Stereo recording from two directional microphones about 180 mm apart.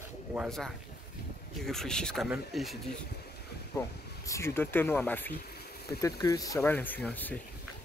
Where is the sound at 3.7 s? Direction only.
15° left (ahead or behind).